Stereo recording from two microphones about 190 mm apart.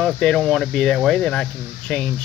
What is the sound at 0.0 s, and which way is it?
Speech, 5° left (ahead or behind).